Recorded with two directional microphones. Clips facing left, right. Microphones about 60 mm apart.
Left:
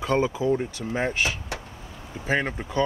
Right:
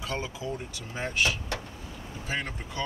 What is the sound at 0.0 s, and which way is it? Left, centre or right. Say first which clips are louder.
Speech: left 11 dB; left.